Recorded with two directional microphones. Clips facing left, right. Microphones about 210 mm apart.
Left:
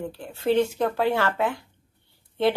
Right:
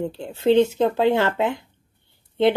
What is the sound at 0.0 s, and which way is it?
A woman's voice, 25° right (ahead or behind).